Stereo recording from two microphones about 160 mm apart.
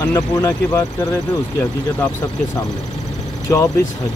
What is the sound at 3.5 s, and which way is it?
Speech, 20° left (ahead or behind).